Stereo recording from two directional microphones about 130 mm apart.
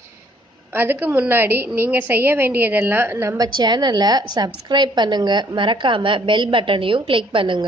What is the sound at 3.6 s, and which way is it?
A woman's voice, 30° right (ahead or behind).